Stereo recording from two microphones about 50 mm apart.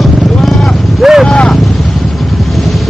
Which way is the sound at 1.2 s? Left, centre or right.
Centre.